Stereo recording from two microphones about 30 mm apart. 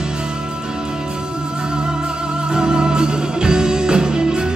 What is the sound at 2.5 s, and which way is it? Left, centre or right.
Music, right.